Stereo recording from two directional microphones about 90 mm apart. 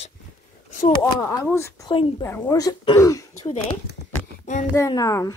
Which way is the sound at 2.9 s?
40° left (ahead or behind).